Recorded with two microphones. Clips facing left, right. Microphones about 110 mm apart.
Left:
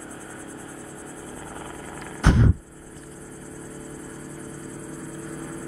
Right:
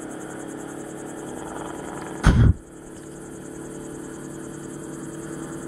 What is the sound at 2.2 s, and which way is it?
Vehicle, 5° right (ahead or behind).